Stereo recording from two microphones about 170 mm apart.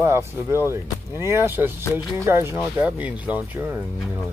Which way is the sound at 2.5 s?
5° right (ahead or behind).